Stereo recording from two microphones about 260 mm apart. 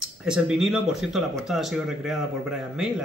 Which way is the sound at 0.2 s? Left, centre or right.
Centre.